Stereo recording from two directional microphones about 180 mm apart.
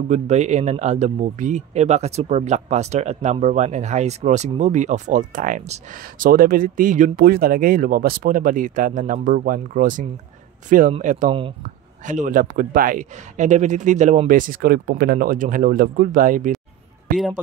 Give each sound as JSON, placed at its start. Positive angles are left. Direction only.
{"t": 0.1, "sound": "speech", "side_deg": -40}